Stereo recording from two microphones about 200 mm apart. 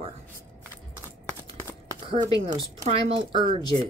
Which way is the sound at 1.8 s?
20° right (ahead or behind).